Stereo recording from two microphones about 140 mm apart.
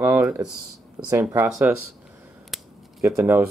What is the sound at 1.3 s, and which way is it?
Speech, 10° right (ahead or behind).